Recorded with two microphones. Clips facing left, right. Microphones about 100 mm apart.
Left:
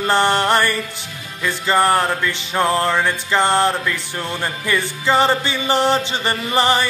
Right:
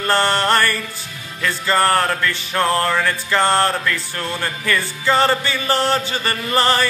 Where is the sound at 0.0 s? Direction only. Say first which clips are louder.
Left 1 dB; 15° left (ahead or behind).